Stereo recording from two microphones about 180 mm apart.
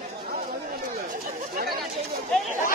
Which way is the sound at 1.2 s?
60° right (ahead or behind).